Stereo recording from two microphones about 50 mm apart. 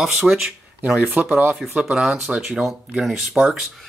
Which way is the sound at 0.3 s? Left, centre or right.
Centre.